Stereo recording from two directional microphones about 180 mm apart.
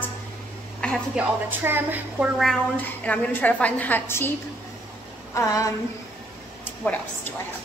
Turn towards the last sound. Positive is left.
turn(degrees=10)  # may be behind; listen again after turning